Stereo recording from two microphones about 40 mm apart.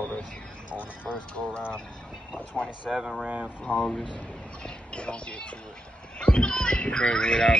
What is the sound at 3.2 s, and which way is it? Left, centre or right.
Speech, right.